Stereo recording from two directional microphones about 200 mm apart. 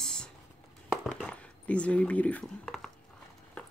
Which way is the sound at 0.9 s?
Centre (ahead or behind).